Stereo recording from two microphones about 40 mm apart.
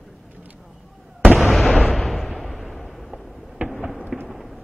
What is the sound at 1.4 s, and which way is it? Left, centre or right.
Fireworks, centre.